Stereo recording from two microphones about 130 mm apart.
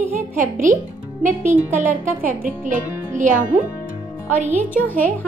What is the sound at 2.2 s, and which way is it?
Speech, 85° right.